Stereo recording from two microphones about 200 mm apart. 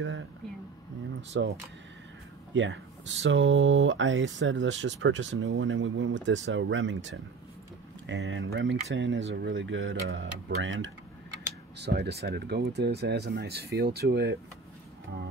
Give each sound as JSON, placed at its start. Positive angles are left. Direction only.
{"t": 1.3, "sound": "speech", "side_deg": -60}
{"t": 11.8, "sound": "speech", "side_deg": -55}